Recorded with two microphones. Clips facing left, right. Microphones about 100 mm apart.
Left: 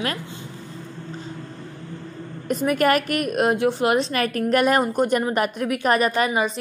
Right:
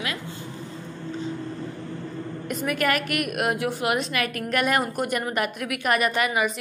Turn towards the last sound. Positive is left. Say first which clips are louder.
# left 3 dB
turn(degrees=30)  # may be behind; listen again after turning